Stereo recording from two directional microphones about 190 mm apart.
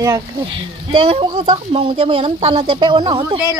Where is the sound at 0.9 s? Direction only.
30° right (ahead or behind).